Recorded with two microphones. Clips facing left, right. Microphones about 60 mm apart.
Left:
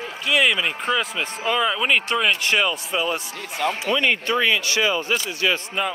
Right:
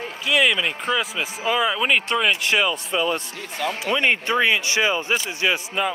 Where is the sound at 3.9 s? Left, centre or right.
Right.